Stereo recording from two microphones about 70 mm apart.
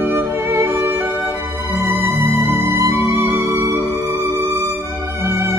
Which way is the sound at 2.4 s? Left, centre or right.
Right.